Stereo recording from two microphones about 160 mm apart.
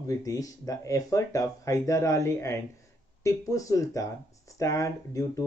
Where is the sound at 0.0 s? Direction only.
20° left (ahead or behind).